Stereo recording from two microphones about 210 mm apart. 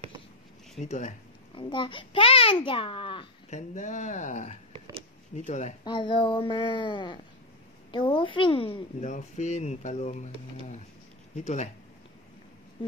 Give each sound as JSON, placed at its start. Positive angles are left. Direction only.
{"t": 0.8, "sound": "speech", "side_deg": 35}
{"t": 1.6, "sound": "a child's voice", "side_deg": 25}
{"t": 5.9, "sound": "a child's voice", "side_deg": 20}